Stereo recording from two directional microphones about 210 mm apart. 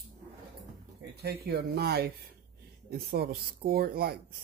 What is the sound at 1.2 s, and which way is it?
Speech, 50° right (ahead or behind).